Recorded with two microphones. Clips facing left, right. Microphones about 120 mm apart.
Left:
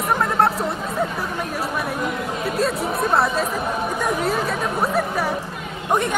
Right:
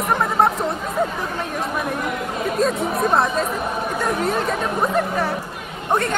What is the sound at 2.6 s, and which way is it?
A woman's voice, centre (ahead or behind).